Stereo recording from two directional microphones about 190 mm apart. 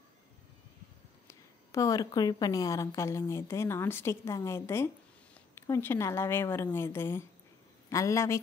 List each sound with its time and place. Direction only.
1.2 s a woman's voice: 15° left (ahead or behind)